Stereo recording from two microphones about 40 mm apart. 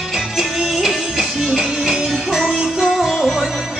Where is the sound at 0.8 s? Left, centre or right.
Centre.